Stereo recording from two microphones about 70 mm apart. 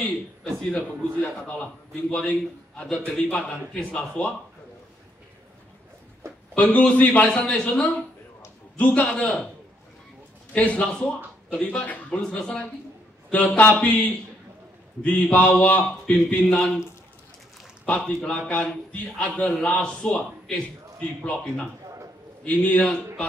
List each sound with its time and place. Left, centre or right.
0.0 s a man's voice: centre
6.5 s a man's voice: left
10.5 s a man's voice: centre
15.0 s a man's voice: centre
17.8 s a man's voice: centre